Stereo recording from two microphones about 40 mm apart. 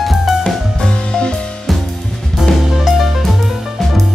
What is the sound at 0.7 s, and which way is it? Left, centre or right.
Music, left.